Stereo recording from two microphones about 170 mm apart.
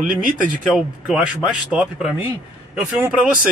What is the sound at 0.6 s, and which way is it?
Speech, centre (ahead or behind).